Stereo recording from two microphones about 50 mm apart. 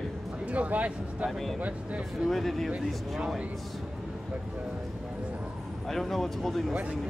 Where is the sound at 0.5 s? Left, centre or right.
Right.